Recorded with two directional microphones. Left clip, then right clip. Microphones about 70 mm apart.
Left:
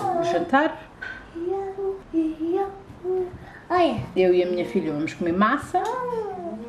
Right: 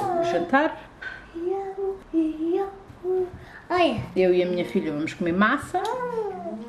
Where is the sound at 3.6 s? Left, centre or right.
Right.